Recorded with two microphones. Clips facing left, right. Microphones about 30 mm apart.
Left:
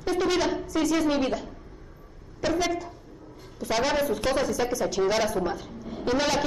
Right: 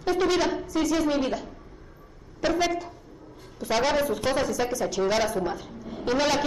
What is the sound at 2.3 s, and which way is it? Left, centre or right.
A woman's voice, centre.